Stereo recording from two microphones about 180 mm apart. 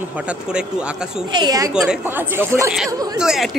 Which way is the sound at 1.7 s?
5° right (ahead or behind).